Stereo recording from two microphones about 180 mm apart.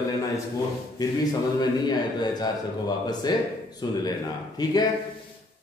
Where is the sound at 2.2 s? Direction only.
20° left (ahead or behind).